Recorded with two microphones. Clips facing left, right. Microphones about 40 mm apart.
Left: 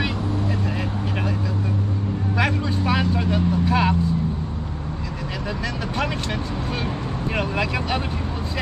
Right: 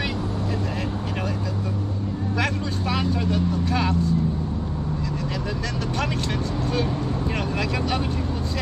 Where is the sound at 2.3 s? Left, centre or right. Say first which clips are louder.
Left 3 dB; centre.